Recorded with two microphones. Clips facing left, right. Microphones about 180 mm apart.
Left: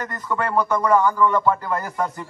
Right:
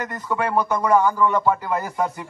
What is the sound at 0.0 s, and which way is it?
Speech, 10° right (ahead or behind).